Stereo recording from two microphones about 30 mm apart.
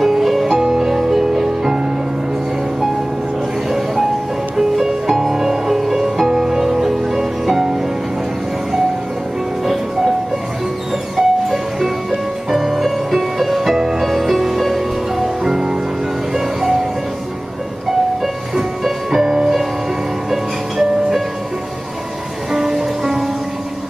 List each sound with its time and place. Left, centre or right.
0.0 s music: centre
0.6 s music: centre
4.6 s music: centre
11.1 s music: centre
14.0 s music: centre
15.4 s music: centre
18.6 s music: centre
22.5 s music: centre